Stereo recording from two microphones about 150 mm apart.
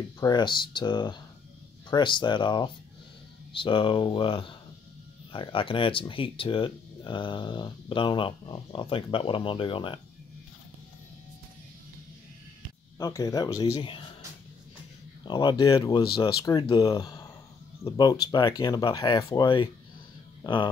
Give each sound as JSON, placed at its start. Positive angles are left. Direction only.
{"t": 0.2, "sound": "speech", "side_deg": 30}
{"t": 13.0, "sound": "speech", "side_deg": 25}
{"t": 13.7, "sound": "speech", "side_deg": 35}
{"t": 15.2, "sound": "speech", "side_deg": 30}